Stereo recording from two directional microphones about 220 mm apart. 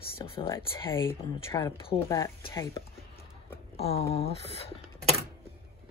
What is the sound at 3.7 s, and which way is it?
Speech, 25° left (ahead or behind).